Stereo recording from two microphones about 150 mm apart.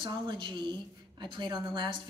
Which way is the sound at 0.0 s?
30° right (ahead or behind).